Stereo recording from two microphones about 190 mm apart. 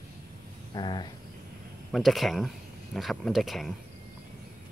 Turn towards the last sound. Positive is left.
turn(degrees=0)  # may be behind; listen again after turning